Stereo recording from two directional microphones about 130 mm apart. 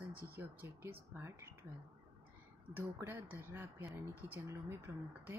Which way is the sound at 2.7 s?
15° right (ahead or behind).